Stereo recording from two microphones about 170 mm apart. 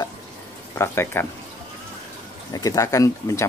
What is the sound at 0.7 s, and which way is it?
Speech, 15° left (ahead or behind).